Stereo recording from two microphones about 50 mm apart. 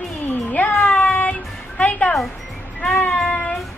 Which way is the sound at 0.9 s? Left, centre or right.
Left.